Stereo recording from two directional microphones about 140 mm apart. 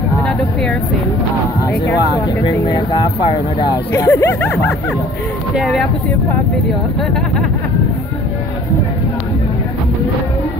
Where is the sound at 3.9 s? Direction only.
20° left (ahead or behind).